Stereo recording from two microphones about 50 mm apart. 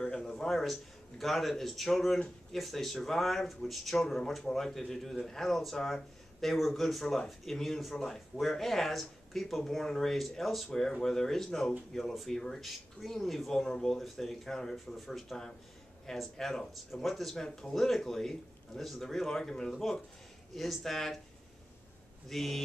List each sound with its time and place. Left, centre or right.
0.0 s a man's voice: centre
10.7 s speech: centre
22.3 s speech: centre